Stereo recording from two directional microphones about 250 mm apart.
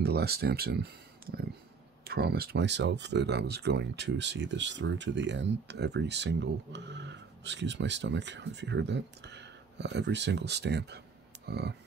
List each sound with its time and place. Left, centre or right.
0.0 s speech: right